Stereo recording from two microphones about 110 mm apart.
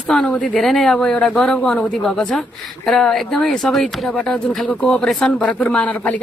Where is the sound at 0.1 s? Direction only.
10° left (ahead or behind).